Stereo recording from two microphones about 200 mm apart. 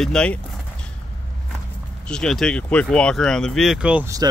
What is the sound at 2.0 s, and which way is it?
Speech, 5° left (ahead or behind).